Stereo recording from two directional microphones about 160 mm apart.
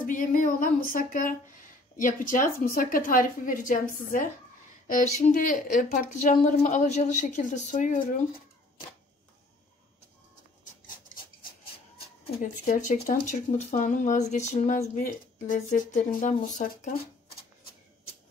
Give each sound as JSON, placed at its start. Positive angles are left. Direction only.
{"t": 0.0, "sound": "speech", "side_deg": 55}
{"t": 12.9, "sound": "speech", "side_deg": 45}
{"t": 15.0, "sound": "speech", "side_deg": 60}